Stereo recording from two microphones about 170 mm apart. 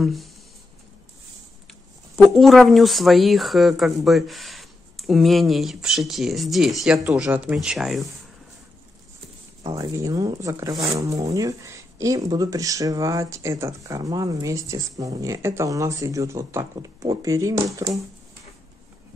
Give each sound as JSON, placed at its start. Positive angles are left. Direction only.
{"t": 0.0, "sound": "speech", "side_deg": 0}
{"t": 2.2, "sound": "speech", "side_deg": 0}
{"t": 9.8, "sound": "speech", "side_deg": -20}